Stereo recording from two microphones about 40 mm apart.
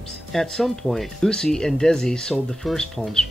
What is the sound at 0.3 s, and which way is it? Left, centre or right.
Speech, centre.